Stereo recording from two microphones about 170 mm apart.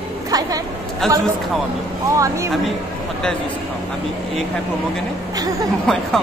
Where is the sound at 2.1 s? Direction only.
20° right (ahead or behind).